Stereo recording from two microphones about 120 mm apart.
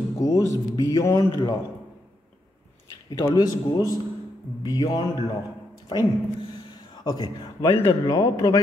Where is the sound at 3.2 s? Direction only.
35° left (ahead or behind).